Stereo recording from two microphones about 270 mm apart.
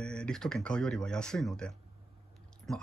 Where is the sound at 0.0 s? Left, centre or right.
Centre.